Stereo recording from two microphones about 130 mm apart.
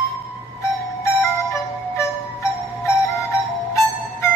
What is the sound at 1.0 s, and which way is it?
Music, 20° left (ahead or behind).